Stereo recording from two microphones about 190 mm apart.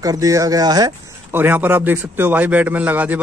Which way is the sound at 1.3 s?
10° right (ahead or behind).